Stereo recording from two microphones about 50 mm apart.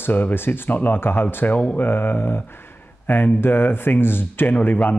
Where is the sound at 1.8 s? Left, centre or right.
Left.